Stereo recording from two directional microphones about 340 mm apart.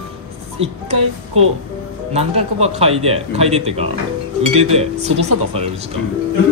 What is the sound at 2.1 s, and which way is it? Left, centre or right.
Speech, centre.